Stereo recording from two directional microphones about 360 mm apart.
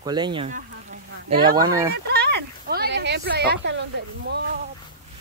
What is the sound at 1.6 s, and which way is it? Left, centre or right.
Speech, centre.